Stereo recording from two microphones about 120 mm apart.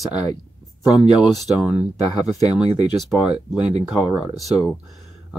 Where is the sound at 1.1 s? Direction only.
5° right (ahead or behind).